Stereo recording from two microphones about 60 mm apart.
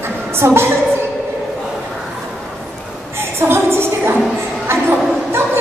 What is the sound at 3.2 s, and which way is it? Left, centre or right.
Music, right.